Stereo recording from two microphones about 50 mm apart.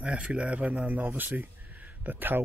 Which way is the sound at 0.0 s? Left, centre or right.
Right.